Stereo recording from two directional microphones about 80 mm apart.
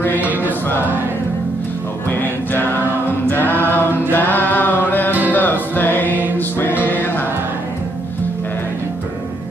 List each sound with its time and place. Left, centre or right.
0.2 s music: right
2.5 s choir: left
3.3 s a capella: left
4.1 s music: left